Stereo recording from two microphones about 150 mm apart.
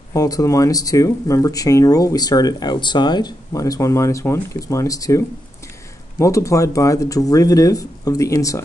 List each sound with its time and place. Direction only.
0.1 s speech: 25° left (ahead or behind)